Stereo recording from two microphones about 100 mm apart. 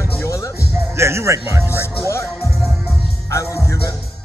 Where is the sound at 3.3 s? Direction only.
30° left (ahead or behind).